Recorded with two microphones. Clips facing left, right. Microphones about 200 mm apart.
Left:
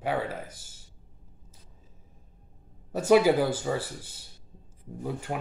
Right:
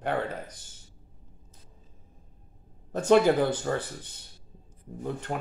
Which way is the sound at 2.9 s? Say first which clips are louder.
Even; 5° left (ahead or behind).